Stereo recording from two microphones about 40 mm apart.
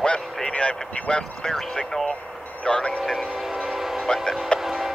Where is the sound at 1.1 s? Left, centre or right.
Centre.